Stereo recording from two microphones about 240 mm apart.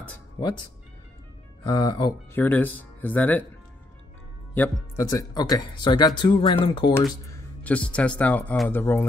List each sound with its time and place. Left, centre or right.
1.7 s speech: centre
4.6 s speech: centre
7.2 s speech: centre